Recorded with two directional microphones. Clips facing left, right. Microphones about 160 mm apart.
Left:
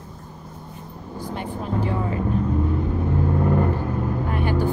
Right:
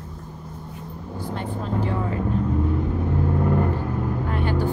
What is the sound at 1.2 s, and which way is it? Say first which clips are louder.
Speech: even; 15° left (ahead or behind).